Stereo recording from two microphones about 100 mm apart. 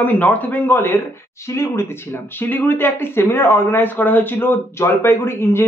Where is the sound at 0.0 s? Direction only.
20° left (ahead or behind).